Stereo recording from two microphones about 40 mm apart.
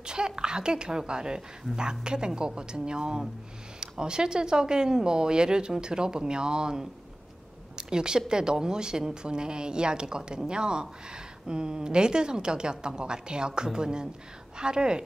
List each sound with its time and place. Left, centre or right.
0.0 s speech: right
7.7 s a sound: centre
8.3 s speech: centre